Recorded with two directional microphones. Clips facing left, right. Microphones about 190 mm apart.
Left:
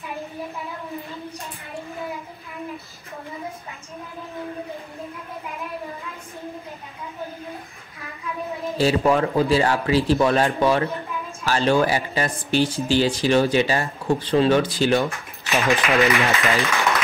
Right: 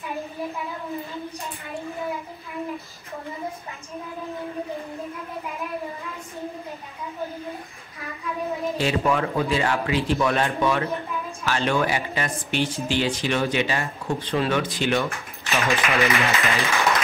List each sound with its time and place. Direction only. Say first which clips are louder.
8.7 s speech: left 5 dB; 35° left (ahead or behind)
15.0 s speech: left 2 dB; 15° left (ahead or behind)